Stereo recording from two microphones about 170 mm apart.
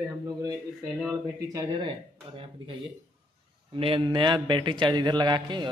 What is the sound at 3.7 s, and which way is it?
A man's voice, 30° right (ahead or behind).